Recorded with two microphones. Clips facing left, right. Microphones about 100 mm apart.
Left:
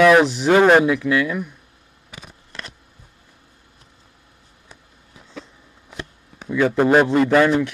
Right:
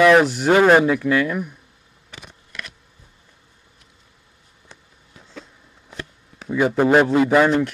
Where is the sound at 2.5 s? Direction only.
30° left (ahead or behind).